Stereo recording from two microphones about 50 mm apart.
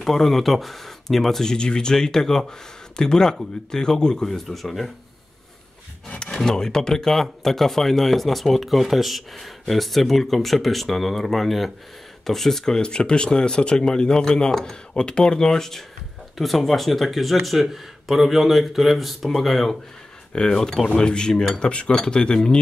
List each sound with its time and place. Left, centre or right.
0.0 s speech: centre
6.0 s a sound: centre
6.3 s speech: centre
20.3 s speech: centre